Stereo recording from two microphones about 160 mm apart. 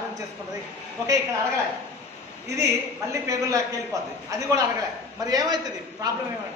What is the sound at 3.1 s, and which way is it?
A woman's voice, 20° right (ahead or behind).